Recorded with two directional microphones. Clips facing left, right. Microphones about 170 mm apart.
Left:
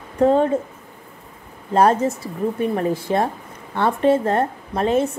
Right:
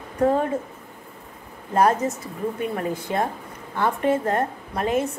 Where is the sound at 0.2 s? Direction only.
25° left (ahead or behind).